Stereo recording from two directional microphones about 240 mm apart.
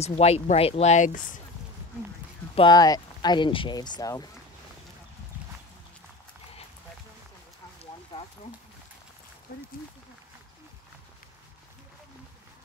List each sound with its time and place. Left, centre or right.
0.0 s speech: left
2.5 s speech: centre